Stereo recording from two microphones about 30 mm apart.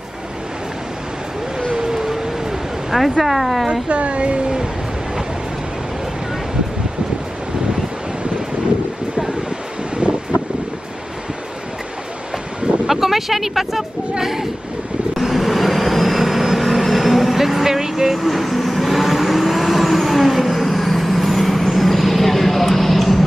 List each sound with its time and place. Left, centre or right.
1.8 s a sound: centre
2.9 s speech: centre
3.9 s speech: right
12.8 s speech: centre
15.1 s vehicle: centre
18.1 s vehicle: centre